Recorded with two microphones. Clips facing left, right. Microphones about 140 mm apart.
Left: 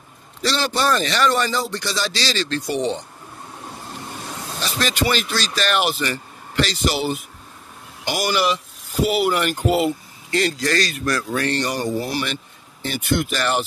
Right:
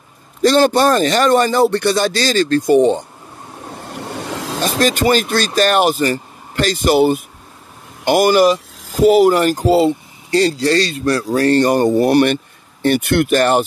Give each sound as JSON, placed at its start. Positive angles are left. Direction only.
{"t": 0.4, "sound": "speech", "side_deg": -50}
{"t": 3.9, "sound": "waves", "side_deg": -70}
{"t": 4.6, "sound": "speech", "side_deg": -45}